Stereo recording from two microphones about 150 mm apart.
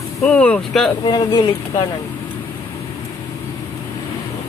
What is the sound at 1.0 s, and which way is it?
Speech, 30° left (ahead or behind).